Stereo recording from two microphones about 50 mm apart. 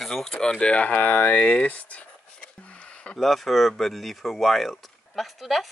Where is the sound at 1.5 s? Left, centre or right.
Left.